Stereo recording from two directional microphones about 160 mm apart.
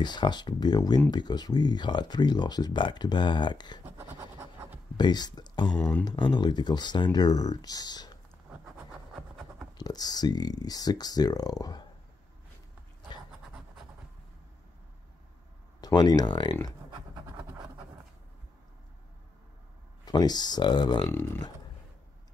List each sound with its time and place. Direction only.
0.0 s speech: 30° left (ahead or behind)
4.4 s writing: 15° right (ahead or behind)
4.9 s speech: 25° left (ahead or behind)
5.7 s speech: 5° left (ahead or behind)
6.0 s speech: 30° left (ahead or behind)
9.8 s speech: 25° left (ahead or behind)
15.8 s speech: 25° left (ahead or behind)
16.9 s scratch: 30° right (ahead or behind)
20.1 s speech: 25° left (ahead or behind)
21.1 s speech: 15° left (ahead or behind)